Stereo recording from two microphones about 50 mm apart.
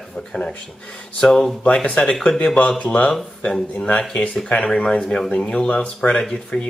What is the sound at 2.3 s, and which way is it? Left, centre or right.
Speech, left.